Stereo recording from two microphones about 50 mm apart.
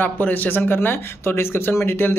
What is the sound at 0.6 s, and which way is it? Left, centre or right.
Speech, left.